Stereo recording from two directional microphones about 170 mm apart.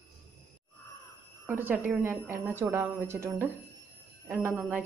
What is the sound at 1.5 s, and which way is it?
A woman's voice, 10° right (ahead or behind).